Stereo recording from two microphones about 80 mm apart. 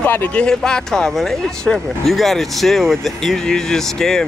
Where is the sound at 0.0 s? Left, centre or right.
Left.